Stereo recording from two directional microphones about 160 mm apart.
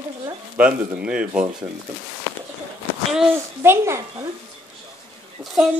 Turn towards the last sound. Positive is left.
turn(degrees=0)  # may be behind; listen again after turning